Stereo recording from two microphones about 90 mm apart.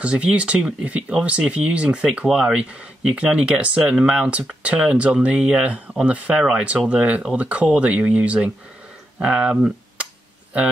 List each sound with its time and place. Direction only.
0.0 s speech: 10° right (ahead or behind)